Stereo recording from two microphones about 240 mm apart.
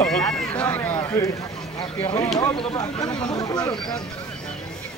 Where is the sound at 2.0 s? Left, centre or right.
Centre.